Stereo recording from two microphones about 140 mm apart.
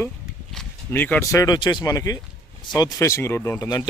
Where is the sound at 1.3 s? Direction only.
25° left (ahead or behind).